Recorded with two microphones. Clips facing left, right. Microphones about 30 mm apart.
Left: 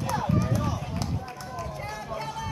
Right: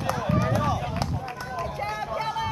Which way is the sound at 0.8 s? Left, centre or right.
Right.